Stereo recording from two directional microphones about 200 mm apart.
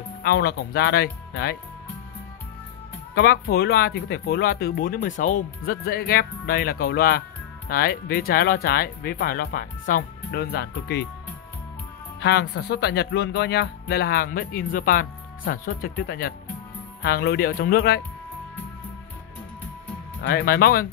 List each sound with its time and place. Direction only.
0.2 s speech: 50° left (ahead or behind)
3.2 s speech: 50° left (ahead or behind)
12.2 s speech: 60° left (ahead or behind)
20.2 s speech: 50° left (ahead or behind)